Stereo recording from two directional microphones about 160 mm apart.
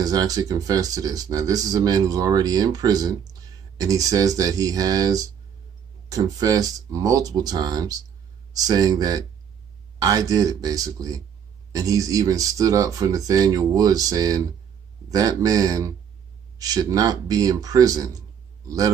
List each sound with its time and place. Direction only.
0.0 s speech: 25° right (ahead or behind)